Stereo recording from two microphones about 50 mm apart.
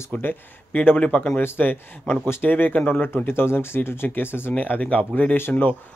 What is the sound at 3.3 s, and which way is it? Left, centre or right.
Speech, left.